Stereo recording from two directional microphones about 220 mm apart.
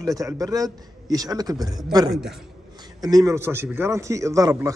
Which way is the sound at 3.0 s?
15° right (ahead or behind).